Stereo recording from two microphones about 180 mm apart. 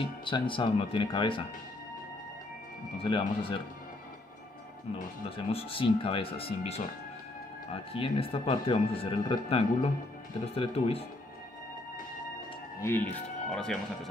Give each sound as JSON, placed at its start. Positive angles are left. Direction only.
{"t": 0.0, "sound": "speech", "side_deg": 30}
{"t": 3.0, "sound": "speech", "side_deg": 30}
{"t": 5.5, "sound": "speech", "side_deg": 30}
{"t": 12.8, "sound": "speech", "side_deg": 10}